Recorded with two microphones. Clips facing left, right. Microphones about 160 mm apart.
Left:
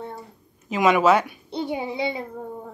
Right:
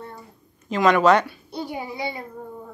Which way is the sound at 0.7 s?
10° left (ahead or behind).